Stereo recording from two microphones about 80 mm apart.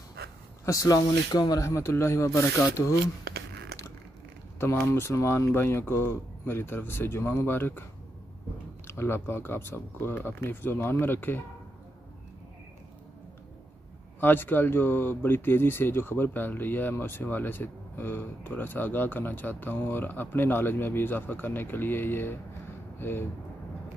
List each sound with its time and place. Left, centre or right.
0.7 s speech: left
1.6 s speech: left
4.6 s speech: left
8.8 s speech: left
14.2 s speech: left